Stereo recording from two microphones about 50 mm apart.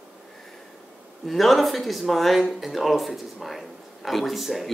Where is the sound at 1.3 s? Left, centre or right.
Centre.